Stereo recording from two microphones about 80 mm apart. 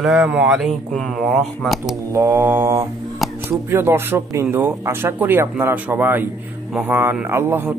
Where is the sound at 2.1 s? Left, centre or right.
Right.